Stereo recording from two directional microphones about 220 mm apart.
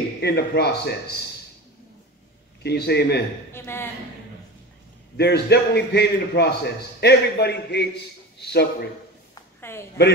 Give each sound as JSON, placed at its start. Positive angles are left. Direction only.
{"t": 0.2, "sound": "a man's voice", "side_deg": 50}
{"t": 2.6, "sound": "a man's voice", "side_deg": 50}
{"t": 3.5, "sound": "a woman's voice", "side_deg": 10}
{"t": 5.1, "sound": "a man's voice", "side_deg": 50}
{"t": 9.6, "sound": "a sound", "side_deg": 10}